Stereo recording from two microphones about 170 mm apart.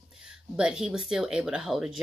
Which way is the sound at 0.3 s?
5° right (ahead or behind).